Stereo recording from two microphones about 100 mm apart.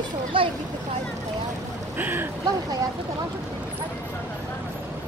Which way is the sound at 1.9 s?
20° right (ahead or behind).